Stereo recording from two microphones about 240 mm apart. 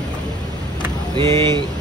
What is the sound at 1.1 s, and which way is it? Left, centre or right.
Speech, centre.